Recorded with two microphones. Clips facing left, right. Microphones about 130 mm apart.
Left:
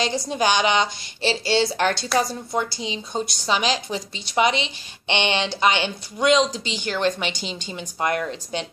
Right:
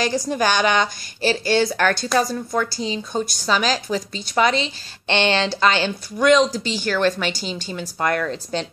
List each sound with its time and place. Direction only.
0.0 s a woman's voice: 25° left (ahead or behind)